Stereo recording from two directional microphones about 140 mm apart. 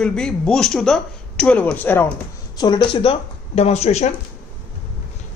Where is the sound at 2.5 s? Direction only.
30° left (ahead or behind); by 4.1 s 50° left (ahead or behind).